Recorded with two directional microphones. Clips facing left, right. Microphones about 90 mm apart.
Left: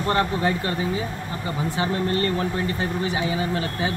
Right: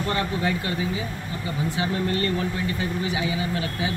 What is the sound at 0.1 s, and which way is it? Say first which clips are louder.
Speech: left 5 dB; 40° left (ahead or behind).